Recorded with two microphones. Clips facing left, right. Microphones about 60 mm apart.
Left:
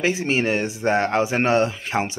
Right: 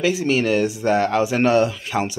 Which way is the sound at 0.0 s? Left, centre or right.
Left.